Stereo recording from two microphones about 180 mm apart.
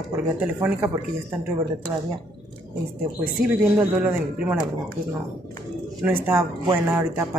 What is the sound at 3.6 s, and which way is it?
Speech, 10° right (ahead or behind).